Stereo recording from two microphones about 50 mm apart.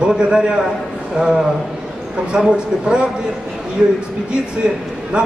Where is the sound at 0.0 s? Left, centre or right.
Centre.